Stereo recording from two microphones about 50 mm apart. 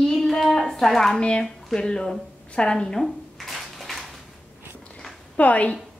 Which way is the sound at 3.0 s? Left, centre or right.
Centre.